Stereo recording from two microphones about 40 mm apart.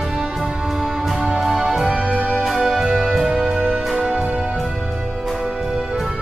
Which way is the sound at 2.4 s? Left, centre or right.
Centre.